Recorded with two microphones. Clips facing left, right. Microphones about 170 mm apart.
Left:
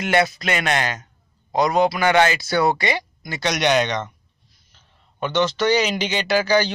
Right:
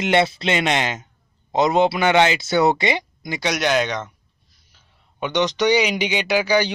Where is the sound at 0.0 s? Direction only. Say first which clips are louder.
Right 1 dB; 25° right (ahead or behind).